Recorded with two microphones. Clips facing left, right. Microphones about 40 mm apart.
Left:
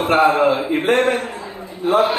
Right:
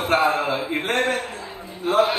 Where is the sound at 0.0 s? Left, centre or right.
Left.